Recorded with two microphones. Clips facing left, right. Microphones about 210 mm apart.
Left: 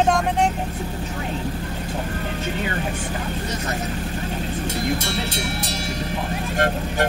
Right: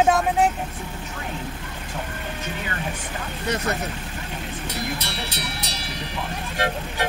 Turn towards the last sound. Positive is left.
turn(degrees=50)  # may be behind; listen again after turning